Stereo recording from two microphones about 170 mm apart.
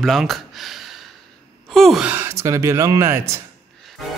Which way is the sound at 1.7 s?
Centre (ahead or behind).